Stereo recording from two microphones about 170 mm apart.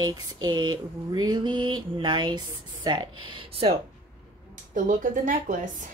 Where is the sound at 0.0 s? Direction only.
25° right (ahead or behind).